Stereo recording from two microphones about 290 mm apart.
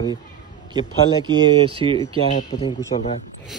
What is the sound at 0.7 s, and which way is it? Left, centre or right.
Speech, centre.